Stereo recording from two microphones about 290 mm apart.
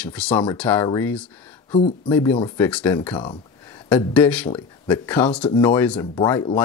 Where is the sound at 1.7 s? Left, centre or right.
Centre.